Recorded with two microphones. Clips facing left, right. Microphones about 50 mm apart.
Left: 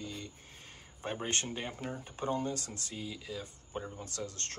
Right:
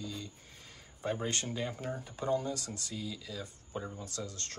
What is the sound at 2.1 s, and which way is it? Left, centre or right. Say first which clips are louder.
Speech: right 1 dB; left.